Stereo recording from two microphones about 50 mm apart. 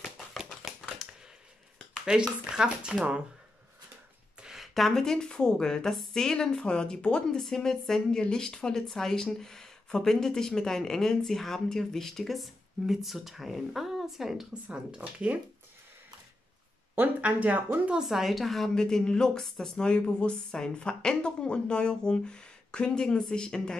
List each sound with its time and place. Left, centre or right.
0.8 s a sound: centre
2.0 s speech: centre
4.4 s a sound: centre
4.7 s speech: centre
14.5 s speech: centre
17.2 s speech: right
18.0 s a woman's voice: centre
18.8 s speech: centre